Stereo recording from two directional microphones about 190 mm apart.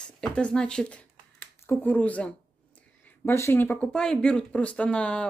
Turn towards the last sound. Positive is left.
turn(degrees=5)  # may be behind; listen again after turning